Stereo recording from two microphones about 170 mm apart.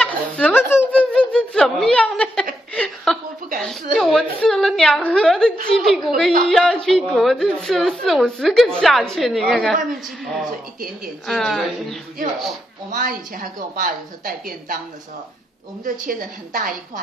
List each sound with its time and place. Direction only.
0.0 s snicker: 10° left (ahead or behind)
2.7 s a sound: 5° left (ahead or behind)
3.5 s a woman's voice: centre (ahead or behind)
12.9 s a woman's voice: 55° right (ahead or behind)
15.8 s a woman's voice: 55° right (ahead or behind)